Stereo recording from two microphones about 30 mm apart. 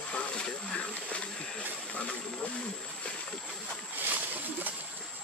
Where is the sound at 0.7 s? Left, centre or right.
Left.